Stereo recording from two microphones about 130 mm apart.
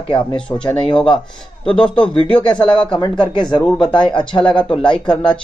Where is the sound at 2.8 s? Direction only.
35° left (ahead or behind).